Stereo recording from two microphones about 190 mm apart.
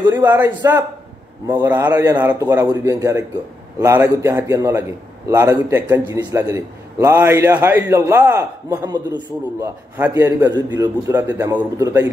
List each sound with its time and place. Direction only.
0.1 s a man's voice: 15° right (ahead or behind)
9.9 s a man's voice: 10° right (ahead or behind)